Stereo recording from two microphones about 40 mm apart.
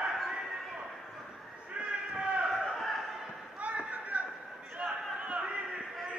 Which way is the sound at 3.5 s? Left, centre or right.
Right.